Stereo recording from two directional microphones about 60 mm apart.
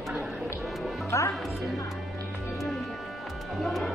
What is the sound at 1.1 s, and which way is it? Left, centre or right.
Speech, left.